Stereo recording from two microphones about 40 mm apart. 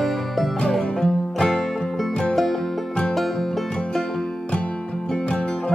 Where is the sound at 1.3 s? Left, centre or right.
Centre.